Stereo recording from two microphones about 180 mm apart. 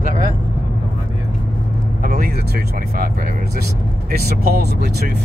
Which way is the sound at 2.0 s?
60° right (ahead or behind).